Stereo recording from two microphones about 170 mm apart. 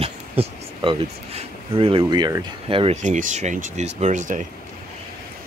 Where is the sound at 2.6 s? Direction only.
35° right (ahead or behind).